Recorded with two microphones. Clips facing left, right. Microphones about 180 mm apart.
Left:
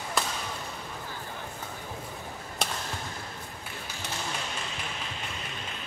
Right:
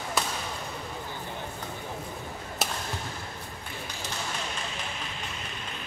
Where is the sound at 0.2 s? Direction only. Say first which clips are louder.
Even; centre (ahead or behind).